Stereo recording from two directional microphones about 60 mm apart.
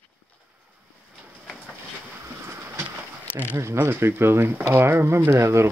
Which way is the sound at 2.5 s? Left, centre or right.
Right.